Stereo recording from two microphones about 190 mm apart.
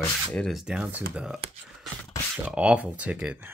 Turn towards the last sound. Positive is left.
turn(degrees=-5)  # may be behind; listen again after turning